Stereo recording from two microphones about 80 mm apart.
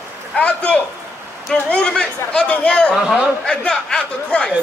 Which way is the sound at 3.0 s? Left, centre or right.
Centre.